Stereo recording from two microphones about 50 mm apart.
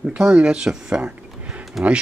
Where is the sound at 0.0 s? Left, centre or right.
Right.